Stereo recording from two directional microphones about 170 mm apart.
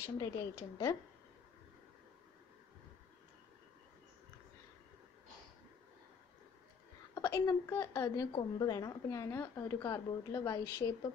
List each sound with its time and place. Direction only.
0.2 s a woman's voice: 20° left (ahead or behind)
7.2 s a woman's voice: 20° left (ahead or behind)